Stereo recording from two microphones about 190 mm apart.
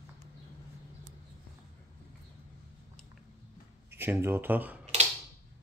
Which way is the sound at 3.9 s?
10° right (ahead or behind).